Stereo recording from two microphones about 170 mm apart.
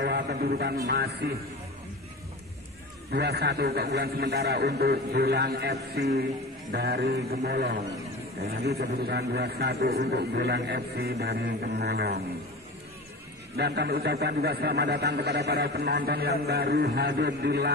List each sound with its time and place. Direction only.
0.0 s a man's voice: 70° right (ahead or behind)
3.1 s a man's voice: 70° right (ahead or behind)
13.6 s a man's voice: 70° right (ahead or behind)